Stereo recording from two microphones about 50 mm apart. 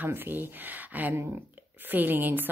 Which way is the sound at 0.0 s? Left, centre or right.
Right.